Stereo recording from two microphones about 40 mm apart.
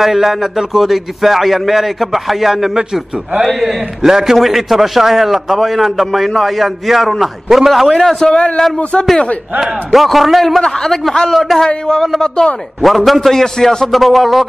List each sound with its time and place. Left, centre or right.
0.0 s a man's voice: centre
2.8 s a man's voice: right
3.4 s a man's voice: centre
8.9 s a man's voice: left
9.6 s a man's voice: centre
10.6 s a man's voice: centre
13.9 s a man's voice: centre